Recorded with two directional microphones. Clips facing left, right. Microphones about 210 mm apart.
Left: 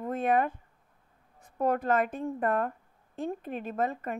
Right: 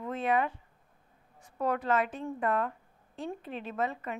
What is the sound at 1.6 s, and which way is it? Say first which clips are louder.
A woman's voice: left 3 dB; 50° left (ahead or behind).